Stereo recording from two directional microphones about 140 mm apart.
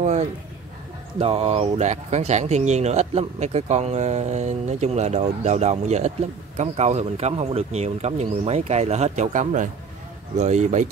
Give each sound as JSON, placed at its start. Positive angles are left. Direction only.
{"t": 1.2, "sound": "speech", "side_deg": -45}